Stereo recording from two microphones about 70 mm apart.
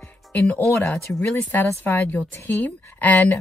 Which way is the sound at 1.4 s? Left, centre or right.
Left.